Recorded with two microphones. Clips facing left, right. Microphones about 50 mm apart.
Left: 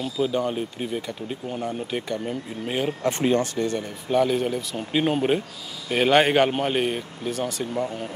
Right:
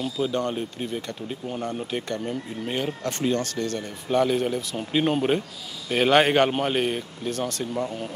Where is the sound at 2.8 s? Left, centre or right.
Centre.